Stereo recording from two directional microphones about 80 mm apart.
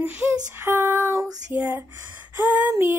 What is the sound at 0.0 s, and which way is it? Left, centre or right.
Child singing, right.